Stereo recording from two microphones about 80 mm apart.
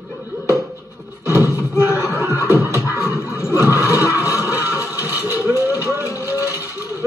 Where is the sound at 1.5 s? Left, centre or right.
Left.